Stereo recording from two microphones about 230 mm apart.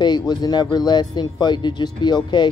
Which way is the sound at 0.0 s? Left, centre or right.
Centre.